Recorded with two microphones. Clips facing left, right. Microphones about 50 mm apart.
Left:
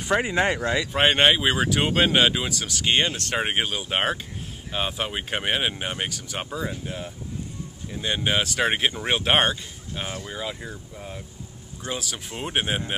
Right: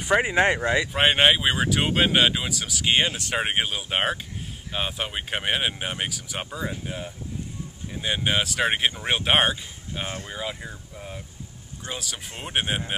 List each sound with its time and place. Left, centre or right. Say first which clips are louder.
0.0 s speech: right 2 dB; centre
0.9 s speech: left 1 dB; centre